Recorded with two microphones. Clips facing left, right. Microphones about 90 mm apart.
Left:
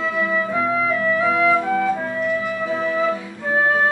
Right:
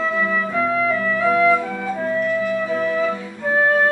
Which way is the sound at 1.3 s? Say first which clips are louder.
Right 4 dB; 15° left (ahead or behind).